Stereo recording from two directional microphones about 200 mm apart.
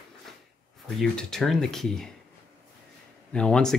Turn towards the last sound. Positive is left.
turn(degrees=5)  # may be behind; listen again after turning